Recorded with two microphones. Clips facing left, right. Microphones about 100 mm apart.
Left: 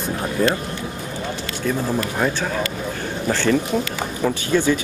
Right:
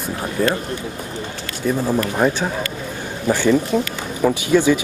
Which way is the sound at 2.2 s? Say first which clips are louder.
Right 3 dB; 15° right (ahead or behind).